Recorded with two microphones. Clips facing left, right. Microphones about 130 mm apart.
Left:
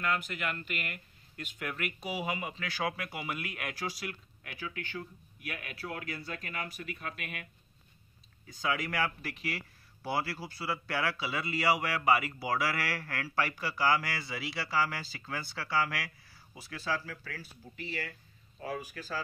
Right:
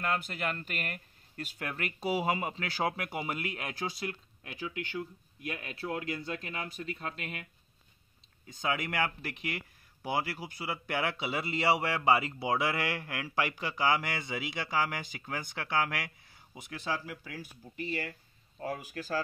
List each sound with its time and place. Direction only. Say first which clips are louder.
0.0 s speech: right 1 dB; 30° right (ahead or behind)
8.5 s speech: even; 20° right (ahead or behind)
18.6 s speech: right 1 dB; 45° right (ahead or behind)